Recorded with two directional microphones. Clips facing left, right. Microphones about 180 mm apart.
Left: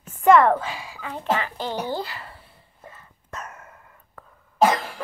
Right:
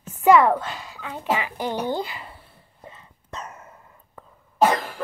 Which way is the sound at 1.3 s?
15° right (ahead or behind).